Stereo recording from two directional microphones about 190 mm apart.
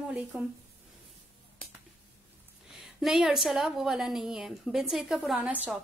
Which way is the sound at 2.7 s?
Centre (ahead or behind).